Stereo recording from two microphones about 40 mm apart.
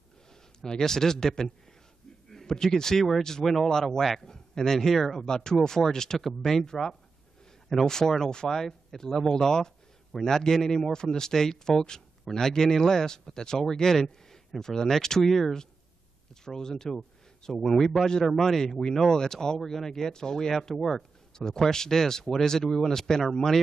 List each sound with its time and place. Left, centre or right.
0.6 s a man's voice: centre
5.2 s a man's voice: centre
7.8 s a man's voice: centre